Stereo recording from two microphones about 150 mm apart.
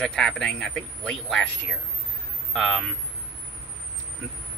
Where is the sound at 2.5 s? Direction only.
Centre (ahead or behind).